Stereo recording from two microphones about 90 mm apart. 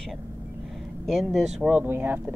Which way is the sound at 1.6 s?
20° right (ahead or behind).